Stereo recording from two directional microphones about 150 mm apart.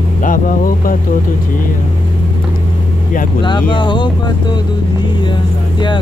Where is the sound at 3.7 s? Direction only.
30° left (ahead or behind).